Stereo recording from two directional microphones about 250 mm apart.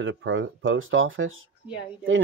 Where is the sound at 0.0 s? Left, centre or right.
Right.